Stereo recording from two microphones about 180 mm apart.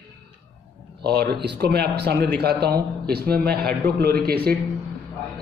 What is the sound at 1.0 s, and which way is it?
Speech, 65° right (ahead or behind).